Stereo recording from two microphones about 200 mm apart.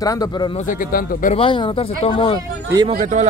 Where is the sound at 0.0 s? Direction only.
20° left (ahead or behind).